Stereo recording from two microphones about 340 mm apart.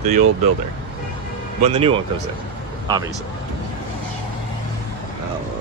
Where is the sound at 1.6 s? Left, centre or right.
Centre.